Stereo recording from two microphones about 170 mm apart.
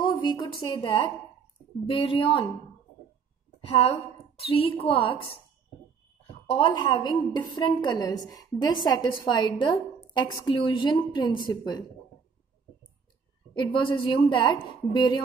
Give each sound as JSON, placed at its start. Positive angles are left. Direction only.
{"t": 0.0, "sound": "a sound", "side_deg": 25}
{"t": 0.6, "sound": "a woman's voice", "side_deg": 30}
{"t": 3.6, "sound": "a woman's voice", "side_deg": 35}
{"t": 6.5, "sound": "a woman's voice", "side_deg": 25}
{"t": 13.6, "sound": "a woman's voice", "side_deg": 30}